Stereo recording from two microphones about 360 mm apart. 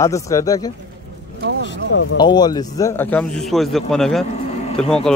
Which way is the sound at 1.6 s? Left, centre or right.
Left.